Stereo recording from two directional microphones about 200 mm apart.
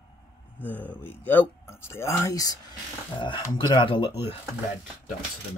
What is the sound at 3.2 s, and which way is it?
Speech, 25° left (ahead or behind).